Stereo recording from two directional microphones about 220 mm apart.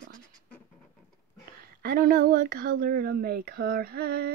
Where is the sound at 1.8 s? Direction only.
40° right (ahead or behind).